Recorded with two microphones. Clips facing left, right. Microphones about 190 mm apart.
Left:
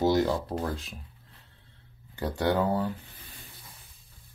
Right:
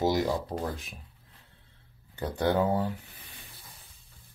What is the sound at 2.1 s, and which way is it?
Speech, 20° right (ahead or behind).